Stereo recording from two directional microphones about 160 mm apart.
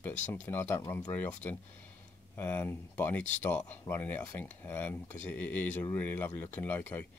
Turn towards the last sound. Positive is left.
turn(degrees=10)  # may be behind; listen again after turning